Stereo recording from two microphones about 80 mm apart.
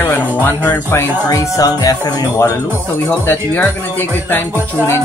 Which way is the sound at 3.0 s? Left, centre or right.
Left.